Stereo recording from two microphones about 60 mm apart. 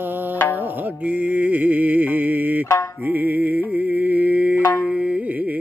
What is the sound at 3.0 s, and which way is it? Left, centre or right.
Music, right.